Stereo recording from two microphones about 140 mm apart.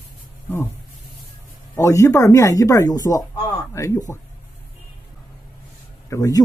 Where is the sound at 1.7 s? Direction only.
20° left (ahead or behind).